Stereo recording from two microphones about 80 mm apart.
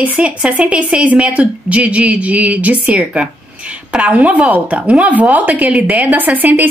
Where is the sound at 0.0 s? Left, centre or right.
Centre.